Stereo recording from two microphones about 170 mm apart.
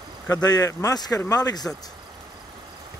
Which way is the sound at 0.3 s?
20° left (ahead or behind).